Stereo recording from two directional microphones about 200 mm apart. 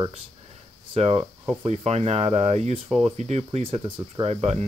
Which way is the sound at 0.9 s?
30° right (ahead or behind).